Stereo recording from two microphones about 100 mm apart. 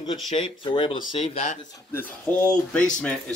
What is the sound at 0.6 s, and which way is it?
Speech, 55° left (ahead or behind).